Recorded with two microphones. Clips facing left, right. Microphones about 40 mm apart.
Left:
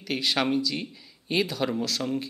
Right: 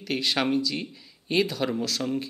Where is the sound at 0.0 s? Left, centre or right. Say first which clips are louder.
Even; centre.